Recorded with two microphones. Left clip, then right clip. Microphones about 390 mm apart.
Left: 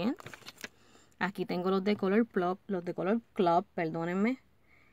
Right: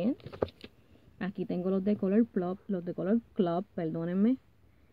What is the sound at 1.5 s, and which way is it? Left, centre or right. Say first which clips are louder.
Speech: right 1 dB; centre.